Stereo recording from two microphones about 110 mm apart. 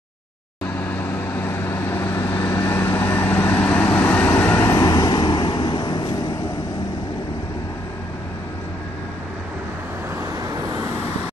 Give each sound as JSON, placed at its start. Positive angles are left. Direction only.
{"t": 0.7, "sound": "vehicle", "side_deg": 20}
{"t": 4.7, "sound": "vehicle", "side_deg": 35}